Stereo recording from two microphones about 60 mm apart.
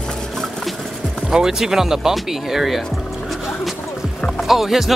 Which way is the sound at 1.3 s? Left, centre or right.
Centre.